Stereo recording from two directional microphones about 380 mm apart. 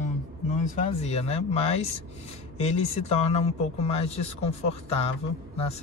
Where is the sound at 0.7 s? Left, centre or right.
Centre.